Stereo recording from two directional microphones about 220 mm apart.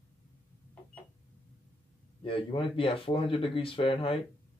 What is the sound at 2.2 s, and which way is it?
Speech, 25° left (ahead or behind).